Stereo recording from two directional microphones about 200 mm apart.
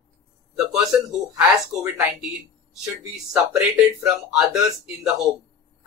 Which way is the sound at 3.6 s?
5° right (ahead or behind).